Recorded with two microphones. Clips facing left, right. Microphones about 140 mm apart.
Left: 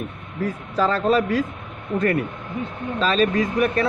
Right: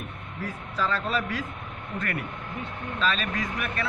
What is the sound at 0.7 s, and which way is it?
Speech, 40° left (ahead or behind).